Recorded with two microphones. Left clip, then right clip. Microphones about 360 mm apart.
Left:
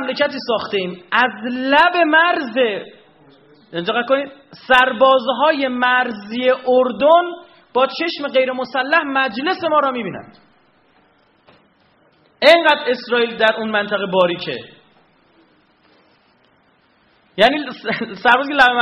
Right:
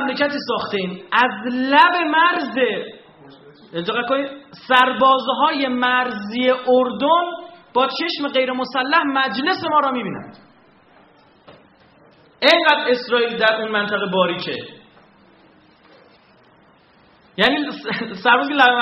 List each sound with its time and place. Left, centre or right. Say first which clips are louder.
0.0 s a man's voice: left 1 dB; left
3.7 s a man's voice: left 3 dB; left
12.4 s a man's voice: left 3 dB; left
17.4 s a man's voice: left 3 dB; left